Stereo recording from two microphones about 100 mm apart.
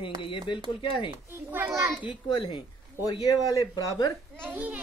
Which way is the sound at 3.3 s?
35° left (ahead or behind).